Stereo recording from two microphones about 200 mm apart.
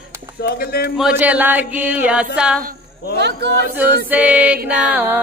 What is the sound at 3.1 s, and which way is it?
Speech, 55° right (ahead or behind).